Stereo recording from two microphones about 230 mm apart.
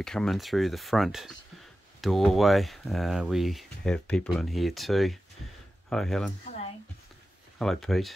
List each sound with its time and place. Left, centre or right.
0.0 s speech: centre
7.5 s speech: centre